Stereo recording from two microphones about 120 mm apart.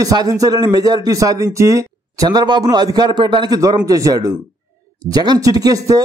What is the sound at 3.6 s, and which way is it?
A man's voice, 30° right (ahead or behind).